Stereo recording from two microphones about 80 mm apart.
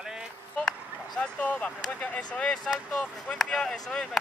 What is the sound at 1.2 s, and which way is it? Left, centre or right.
Speech, centre.